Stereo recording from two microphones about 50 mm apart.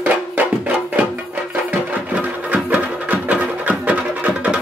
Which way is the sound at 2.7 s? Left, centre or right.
Right.